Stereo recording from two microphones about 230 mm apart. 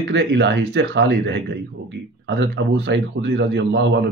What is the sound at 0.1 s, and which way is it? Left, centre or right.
Speech, right.